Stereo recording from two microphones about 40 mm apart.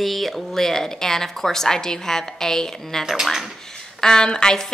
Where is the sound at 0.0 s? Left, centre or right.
Centre.